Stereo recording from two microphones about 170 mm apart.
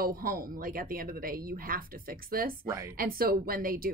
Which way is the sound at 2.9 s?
60° right (ahead or behind).